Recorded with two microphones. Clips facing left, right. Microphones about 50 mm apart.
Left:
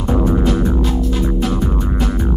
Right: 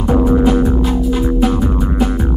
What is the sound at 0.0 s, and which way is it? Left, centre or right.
Music, centre.